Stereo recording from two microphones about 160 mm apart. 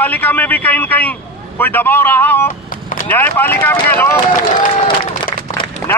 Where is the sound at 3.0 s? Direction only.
10° left (ahead or behind).